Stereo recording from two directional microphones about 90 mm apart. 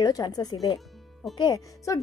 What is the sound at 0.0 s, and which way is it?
A woman's voice, 45° left (ahead or behind).